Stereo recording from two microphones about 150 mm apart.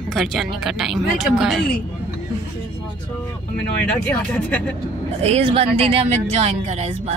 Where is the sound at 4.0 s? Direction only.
10° left (ahead or behind).